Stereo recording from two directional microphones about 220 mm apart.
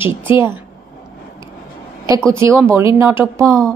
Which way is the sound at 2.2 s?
10° right (ahead or behind).